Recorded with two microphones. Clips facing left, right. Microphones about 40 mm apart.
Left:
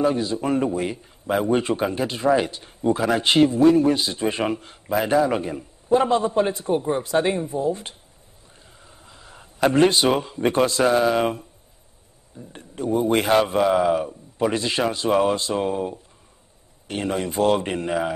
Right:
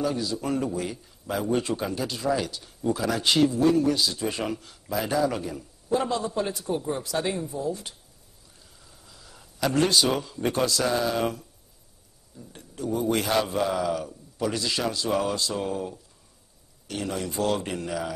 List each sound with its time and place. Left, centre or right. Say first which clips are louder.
0.0 s a man's voice: left 6 dB; left